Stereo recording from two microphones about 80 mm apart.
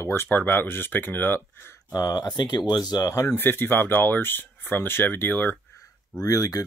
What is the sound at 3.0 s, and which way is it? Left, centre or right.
Speech, left.